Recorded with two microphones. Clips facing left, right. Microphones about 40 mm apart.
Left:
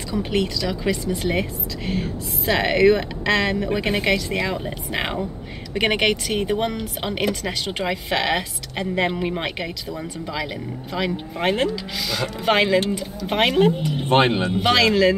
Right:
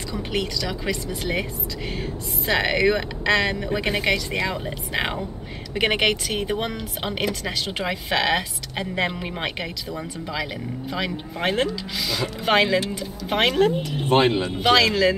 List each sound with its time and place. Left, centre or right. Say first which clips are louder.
0.1 s a woman's voice: left 4 dB; centre
14.0 s speech: left 1 dB; left
14.7 s a woman's voice: left 1 dB; centre